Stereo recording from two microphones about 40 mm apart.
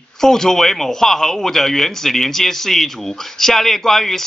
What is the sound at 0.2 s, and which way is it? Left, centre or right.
Speech, centre.